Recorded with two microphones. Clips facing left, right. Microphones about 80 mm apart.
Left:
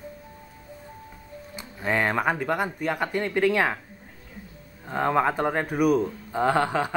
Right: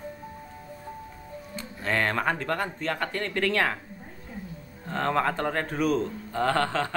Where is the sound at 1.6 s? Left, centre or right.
Centre.